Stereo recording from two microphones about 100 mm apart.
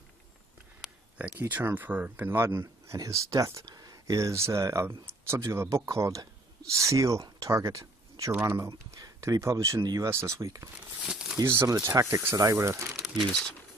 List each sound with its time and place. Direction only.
0.8 s a sound: centre (ahead or behind)
1.4 s speech: 25° right (ahead or behind)
11.0 s speech: 5° right (ahead or behind)
11.4 s speech: 25° right (ahead or behind)